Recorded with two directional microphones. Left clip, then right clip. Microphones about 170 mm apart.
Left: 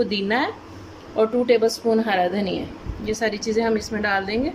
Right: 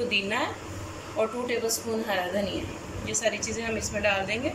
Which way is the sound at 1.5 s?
65° left (ahead or behind).